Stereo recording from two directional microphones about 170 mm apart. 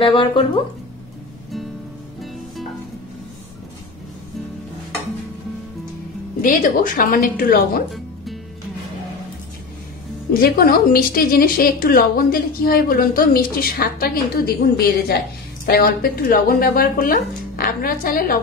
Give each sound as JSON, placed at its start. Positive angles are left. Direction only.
{"t": 0.0, "sound": "speech", "side_deg": 30}
{"t": 6.4, "sound": "a woman's voice", "side_deg": 55}
{"t": 10.4, "sound": "a woman's voice", "side_deg": 60}